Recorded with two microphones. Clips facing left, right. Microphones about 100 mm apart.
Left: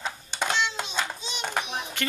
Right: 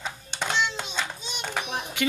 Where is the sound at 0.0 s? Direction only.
10° left (ahead or behind).